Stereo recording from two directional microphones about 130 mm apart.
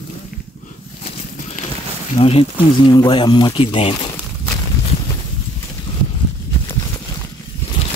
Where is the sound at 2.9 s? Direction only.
35° left (ahead or behind).